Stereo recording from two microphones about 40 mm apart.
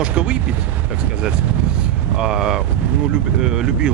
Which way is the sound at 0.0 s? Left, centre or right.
Right.